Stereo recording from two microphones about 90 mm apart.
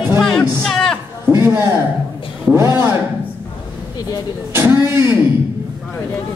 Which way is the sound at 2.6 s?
25° right (ahead or behind).